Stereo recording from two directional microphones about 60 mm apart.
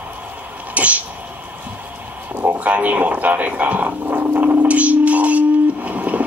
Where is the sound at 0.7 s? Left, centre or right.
Right.